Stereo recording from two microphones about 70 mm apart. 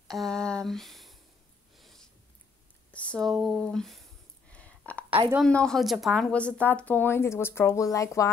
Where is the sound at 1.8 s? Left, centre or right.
Centre.